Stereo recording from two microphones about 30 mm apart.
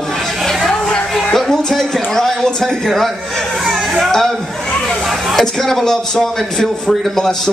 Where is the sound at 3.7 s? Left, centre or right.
Centre.